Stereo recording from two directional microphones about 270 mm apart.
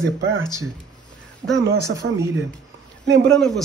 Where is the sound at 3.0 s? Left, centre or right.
Right.